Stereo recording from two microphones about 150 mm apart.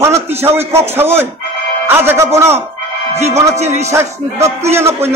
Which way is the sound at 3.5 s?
50° right (ahead or behind).